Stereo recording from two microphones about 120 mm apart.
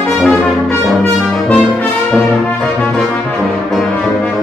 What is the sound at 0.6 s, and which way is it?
Brass instrument, 15° left (ahead or behind).